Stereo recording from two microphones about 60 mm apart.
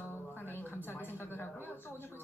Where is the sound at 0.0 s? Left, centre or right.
Left.